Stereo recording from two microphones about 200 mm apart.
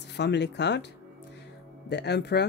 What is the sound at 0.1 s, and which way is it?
Speech, 60° left (ahead or behind).